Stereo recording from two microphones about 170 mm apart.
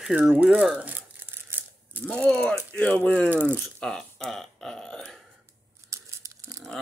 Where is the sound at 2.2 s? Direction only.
5° left (ahead or behind).